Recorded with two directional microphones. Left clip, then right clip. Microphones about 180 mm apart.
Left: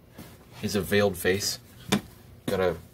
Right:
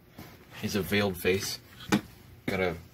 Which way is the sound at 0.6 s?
5° left (ahead or behind).